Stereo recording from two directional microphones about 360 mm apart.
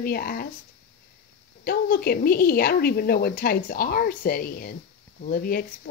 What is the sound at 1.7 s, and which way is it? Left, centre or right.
Speech, left.